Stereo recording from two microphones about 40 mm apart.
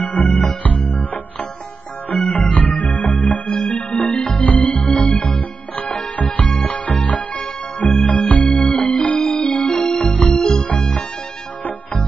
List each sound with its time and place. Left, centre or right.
0.0 s music: left
9.8 s music: left
10.6 s music: left